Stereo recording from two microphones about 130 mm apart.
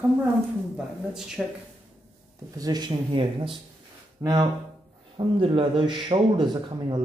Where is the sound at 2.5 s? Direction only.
30° right (ahead or behind).